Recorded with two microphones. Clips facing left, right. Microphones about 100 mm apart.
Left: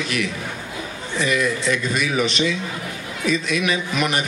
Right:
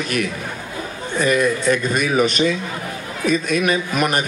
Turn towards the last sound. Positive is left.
turn(degrees=-45)  # may be behind; listen again after turning